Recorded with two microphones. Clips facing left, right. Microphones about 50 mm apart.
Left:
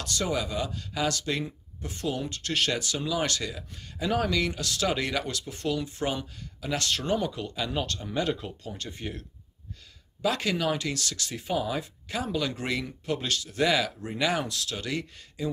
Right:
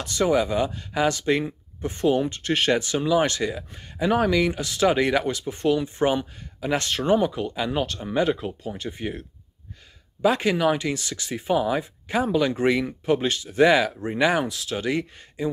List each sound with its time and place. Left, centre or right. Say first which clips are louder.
0.0 s speech: right 8 dB; right
10.2 s speech: right 7 dB; right